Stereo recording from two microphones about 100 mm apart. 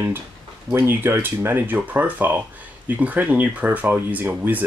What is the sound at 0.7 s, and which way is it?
Speech, 25° right (ahead or behind).